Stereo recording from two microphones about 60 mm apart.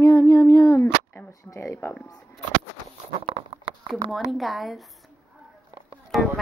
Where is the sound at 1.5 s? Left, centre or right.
Left.